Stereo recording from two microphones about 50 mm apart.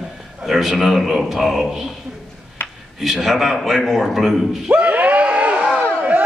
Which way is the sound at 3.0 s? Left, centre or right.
Centre.